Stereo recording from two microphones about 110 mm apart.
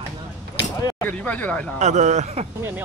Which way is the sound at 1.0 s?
15° left (ahead or behind).